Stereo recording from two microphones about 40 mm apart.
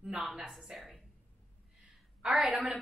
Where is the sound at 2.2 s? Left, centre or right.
Centre.